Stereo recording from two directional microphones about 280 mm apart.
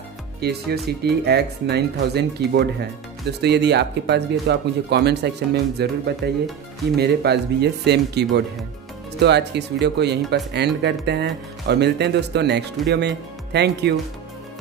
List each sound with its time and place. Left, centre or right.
0.4 s speech: right